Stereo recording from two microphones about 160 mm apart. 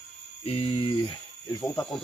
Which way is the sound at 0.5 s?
35° left (ahead or behind).